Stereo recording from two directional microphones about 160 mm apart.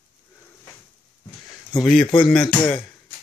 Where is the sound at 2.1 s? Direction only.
30° left (ahead or behind).